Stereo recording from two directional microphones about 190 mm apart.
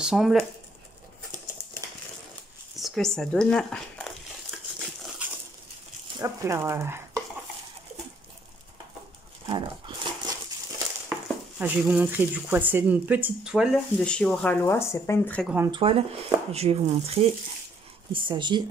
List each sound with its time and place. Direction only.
0.0 s speech: centre (ahead or behind)
2.7 s speech: centre (ahead or behind)
5.2 s bird: 10° right (ahead or behind)
6.2 s speech: 15° right (ahead or behind)
9.5 s dog: 25° right (ahead or behind)
11.1 s speech: 5° right (ahead or behind); by 15.4 s 10° left (ahead or behind)
15.4 s speech: 10° right (ahead or behind)
15.7 s speech: 25° right (ahead or behind)